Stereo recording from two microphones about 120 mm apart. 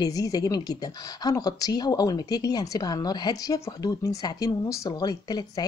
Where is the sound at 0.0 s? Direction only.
30° left (ahead or behind).